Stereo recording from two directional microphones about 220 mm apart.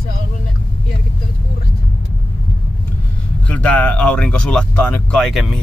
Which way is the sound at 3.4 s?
5° left (ahead or behind).